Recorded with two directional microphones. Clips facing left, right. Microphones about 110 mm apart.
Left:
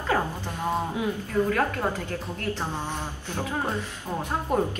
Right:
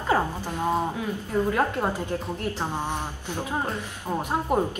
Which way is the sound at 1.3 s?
20° right (ahead or behind).